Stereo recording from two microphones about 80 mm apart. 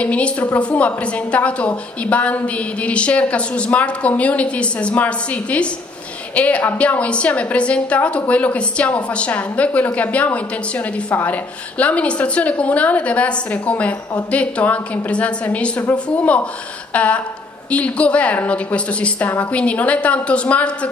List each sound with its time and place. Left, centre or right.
0.0 s a woman's voice: centre
11.8 s a woman's voice: centre